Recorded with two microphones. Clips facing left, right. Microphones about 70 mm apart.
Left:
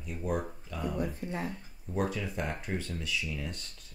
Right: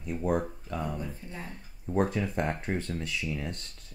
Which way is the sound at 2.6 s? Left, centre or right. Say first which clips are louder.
Right 4 dB; right.